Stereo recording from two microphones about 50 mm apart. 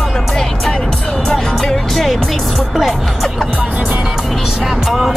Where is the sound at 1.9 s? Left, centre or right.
Centre.